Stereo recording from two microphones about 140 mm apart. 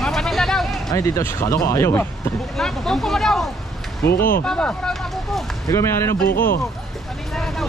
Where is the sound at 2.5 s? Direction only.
5° left (ahead or behind).